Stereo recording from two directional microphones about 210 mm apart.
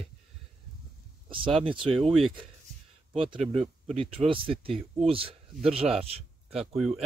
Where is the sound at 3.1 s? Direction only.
25° right (ahead or behind).